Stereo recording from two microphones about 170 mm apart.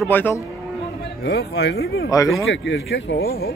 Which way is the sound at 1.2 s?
75° left (ahead or behind).